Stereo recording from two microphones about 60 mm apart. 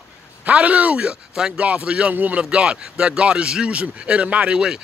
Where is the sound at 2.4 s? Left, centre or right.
Centre.